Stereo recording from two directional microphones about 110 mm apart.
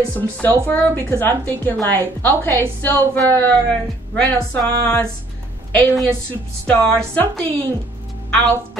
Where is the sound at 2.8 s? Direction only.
15° left (ahead or behind).